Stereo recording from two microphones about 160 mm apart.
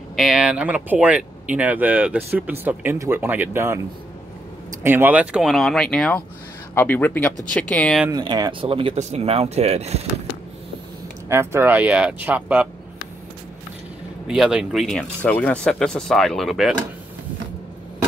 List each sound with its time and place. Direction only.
0.1 s speech: 5° right (ahead or behind)
4.8 s speech: 15° right (ahead or behind); by 8.0 s 5° left (ahead or behind)
8.1 s speech: 25° right (ahead or behind)
11.2 s speech: 15° right (ahead or behind)
14.2 s speech: 5° right (ahead or behind)